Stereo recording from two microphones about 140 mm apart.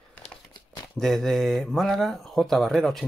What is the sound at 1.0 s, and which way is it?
Speech, centre (ahead or behind).